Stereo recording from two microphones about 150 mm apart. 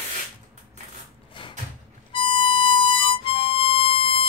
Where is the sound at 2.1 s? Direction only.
35° left (ahead or behind).